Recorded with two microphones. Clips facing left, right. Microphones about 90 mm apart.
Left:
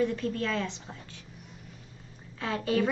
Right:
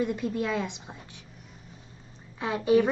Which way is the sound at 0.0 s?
15° right (ahead or behind).